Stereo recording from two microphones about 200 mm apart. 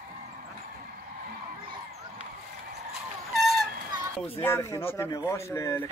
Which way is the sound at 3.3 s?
Centre (ahead or behind).